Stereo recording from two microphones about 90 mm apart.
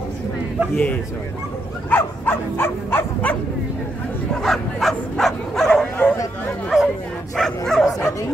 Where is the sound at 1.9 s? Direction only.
20° left (ahead or behind).